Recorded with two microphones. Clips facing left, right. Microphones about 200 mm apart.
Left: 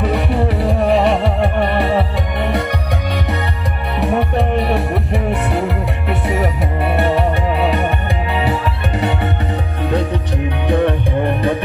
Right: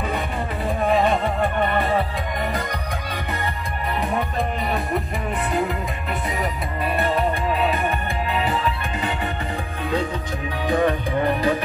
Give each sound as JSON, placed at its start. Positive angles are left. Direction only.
{"t": 0.0, "sound": "music", "side_deg": 75}
{"t": 4.0, "sound": "music", "side_deg": 70}
{"t": 10.7, "sound": "music", "side_deg": 65}